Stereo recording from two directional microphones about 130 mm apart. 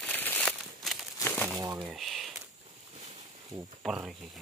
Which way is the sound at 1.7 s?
10° right (ahead or behind).